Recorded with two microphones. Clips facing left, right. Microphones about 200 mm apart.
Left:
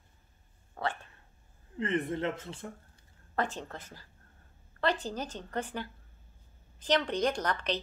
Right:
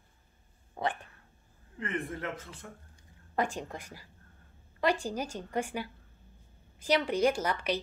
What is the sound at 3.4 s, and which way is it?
A woman's voice, 10° right (ahead or behind).